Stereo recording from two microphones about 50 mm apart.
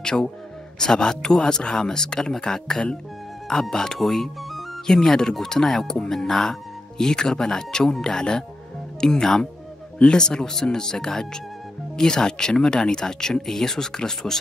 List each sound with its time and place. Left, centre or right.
0.0 s speech: centre